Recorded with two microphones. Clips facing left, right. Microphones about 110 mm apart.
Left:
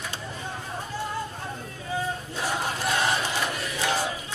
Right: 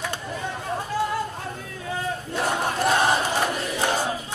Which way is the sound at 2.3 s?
55° right (ahead or behind).